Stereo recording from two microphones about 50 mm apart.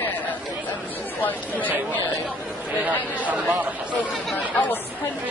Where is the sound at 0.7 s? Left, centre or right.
Left.